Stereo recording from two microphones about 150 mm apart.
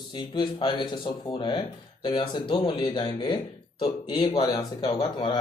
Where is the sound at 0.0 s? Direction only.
30° left (ahead or behind).